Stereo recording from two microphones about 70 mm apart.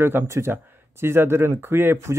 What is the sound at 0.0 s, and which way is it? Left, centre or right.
Speech, right.